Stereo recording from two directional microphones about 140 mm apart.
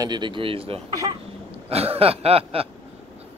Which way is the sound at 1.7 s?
45° right (ahead or behind).